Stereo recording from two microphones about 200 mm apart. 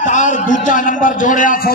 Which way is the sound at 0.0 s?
40° left (ahead or behind).